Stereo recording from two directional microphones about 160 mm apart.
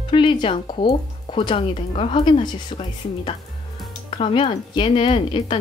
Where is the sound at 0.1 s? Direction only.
30° left (ahead or behind).